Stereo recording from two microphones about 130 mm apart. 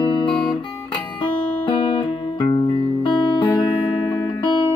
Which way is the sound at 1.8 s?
45° left (ahead or behind).